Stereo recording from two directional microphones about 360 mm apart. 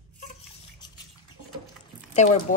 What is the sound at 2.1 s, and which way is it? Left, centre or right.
Speech, centre.